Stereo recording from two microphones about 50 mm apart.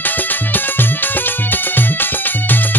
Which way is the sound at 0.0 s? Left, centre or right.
Left.